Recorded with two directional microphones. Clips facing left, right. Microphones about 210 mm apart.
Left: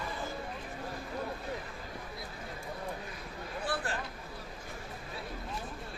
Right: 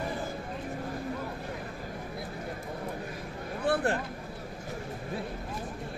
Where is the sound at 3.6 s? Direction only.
60° right (ahead or behind).